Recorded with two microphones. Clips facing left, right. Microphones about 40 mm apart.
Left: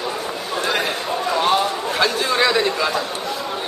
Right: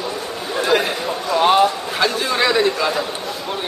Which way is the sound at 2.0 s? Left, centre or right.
Centre.